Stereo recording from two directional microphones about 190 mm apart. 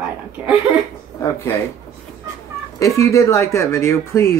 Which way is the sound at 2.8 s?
15° left (ahead or behind).